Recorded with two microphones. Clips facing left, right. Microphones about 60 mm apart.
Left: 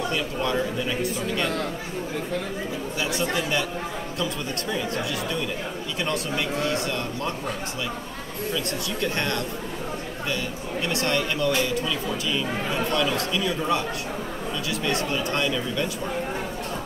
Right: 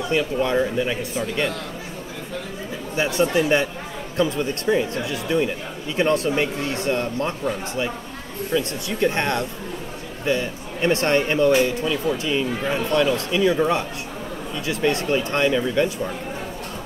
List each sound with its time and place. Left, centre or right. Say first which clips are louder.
0.1 s speech: right 5 dB; right
3.0 s speech: right 7 dB; right
8.5 s speech: right 7 dB; right